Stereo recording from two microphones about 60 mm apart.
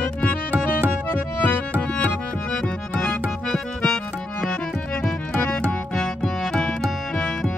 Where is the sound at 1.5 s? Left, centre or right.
Left.